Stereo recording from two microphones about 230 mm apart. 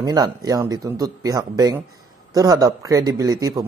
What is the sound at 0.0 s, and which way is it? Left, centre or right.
Speech, centre.